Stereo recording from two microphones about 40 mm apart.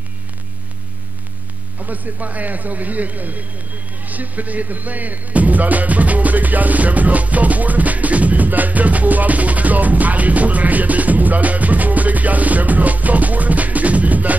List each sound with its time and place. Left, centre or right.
1.8 s a man's voice: right